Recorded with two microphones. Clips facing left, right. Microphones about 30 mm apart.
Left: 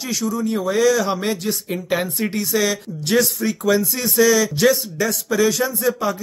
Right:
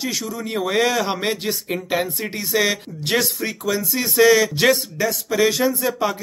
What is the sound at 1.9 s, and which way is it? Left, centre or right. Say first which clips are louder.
Speech: left 2 dB; centre.